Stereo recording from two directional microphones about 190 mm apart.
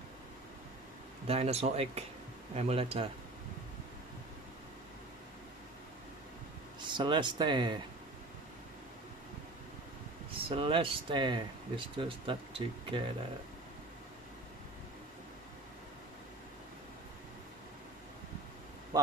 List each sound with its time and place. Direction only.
1.2 s speech: 30° right (ahead or behind)
6.8 s speech: 25° right (ahead or behind)
10.5 s speech: 25° right (ahead or behind)